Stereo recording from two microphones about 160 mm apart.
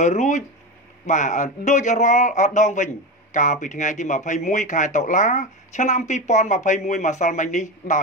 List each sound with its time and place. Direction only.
0.0 s a man's voice: 45° left (ahead or behind)